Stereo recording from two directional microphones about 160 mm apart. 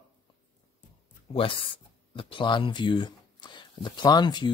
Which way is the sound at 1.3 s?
35° left (ahead or behind).